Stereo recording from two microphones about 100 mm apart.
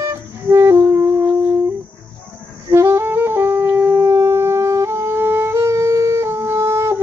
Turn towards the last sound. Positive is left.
turn(degrees=-25)  # may be behind; listen again after turning